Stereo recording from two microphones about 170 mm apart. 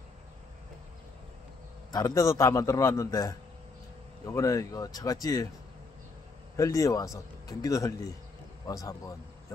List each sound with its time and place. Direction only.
1.9 s a man's voice: 20° left (ahead or behind)
6.5 s a man's voice: 20° left (ahead or behind)